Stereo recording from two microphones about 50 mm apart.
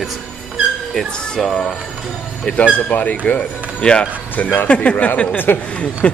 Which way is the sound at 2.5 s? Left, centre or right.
Left.